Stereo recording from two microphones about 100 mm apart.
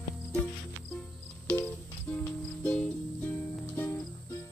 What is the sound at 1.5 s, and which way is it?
Music, 20° left (ahead or behind).